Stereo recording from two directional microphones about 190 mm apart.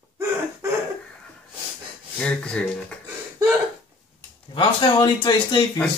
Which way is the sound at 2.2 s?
5° left (ahead or behind).